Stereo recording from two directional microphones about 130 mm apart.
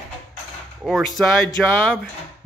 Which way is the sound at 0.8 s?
Centre (ahead or behind).